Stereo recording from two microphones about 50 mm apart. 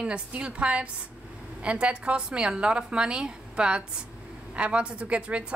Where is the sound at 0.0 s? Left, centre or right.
Right.